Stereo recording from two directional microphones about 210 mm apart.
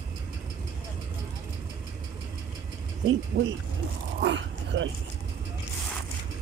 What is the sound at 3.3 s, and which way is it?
Speech, 45° right (ahead or behind).